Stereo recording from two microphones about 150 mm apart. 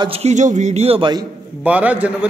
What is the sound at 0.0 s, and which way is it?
A man's voice, 40° right (ahead or behind).